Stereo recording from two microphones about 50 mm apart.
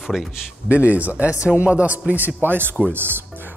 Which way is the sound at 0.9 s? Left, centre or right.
Right.